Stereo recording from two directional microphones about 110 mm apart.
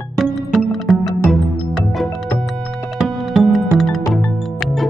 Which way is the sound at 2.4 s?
Centre (ahead or behind).